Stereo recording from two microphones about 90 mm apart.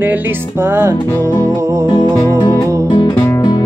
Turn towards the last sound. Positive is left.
turn(degrees=55)  # may be behind; listen again after turning